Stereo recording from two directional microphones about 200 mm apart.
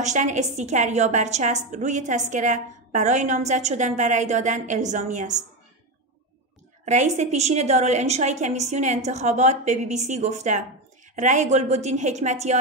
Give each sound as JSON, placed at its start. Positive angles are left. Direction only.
{"t": 0.0, "sound": "a woman's voice", "side_deg": -35}
{"t": 6.8, "sound": "a woman's voice", "side_deg": -35}